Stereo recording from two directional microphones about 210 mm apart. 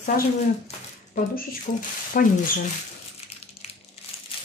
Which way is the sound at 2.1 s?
45° left (ahead or behind).